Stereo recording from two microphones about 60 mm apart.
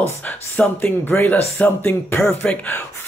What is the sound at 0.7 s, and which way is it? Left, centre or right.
Speech, left.